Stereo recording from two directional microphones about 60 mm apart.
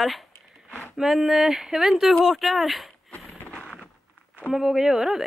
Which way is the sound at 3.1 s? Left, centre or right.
Left.